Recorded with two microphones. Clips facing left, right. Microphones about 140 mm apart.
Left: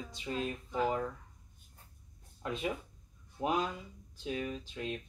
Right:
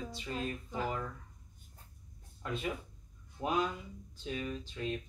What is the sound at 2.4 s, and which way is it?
Speech, 20° left (ahead or behind).